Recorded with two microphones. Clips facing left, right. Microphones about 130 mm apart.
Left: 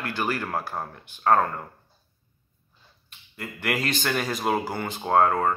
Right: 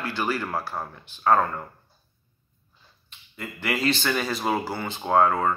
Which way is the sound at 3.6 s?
50° left (ahead or behind).